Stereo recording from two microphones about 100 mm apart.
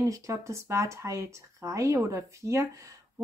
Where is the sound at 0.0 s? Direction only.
30° right (ahead or behind).